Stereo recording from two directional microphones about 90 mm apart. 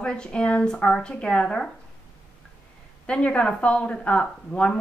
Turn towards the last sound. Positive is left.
turn(degrees=10)  # may be behind; listen again after turning